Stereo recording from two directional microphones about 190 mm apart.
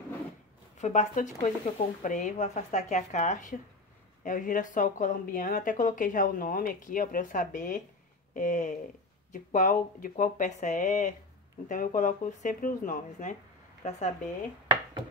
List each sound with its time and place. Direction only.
0.7 s speech: 40° left (ahead or behind)